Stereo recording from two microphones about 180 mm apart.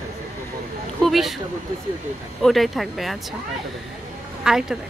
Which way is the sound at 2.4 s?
Centre (ahead or behind).